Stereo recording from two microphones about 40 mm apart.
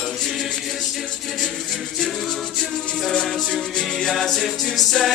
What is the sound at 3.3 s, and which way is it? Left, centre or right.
Music, centre.